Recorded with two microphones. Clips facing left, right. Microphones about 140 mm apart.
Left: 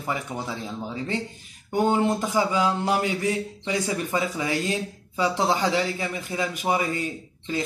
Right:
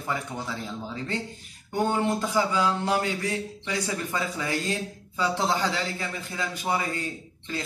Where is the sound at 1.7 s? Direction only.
15° left (ahead or behind).